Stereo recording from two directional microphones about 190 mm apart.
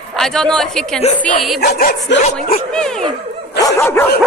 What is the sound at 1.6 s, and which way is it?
Speech, 55° left (ahead or behind).